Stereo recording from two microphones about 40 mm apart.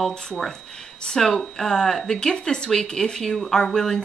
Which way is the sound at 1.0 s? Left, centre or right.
Centre.